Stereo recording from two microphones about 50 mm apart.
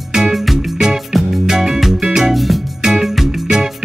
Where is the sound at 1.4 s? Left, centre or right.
Centre.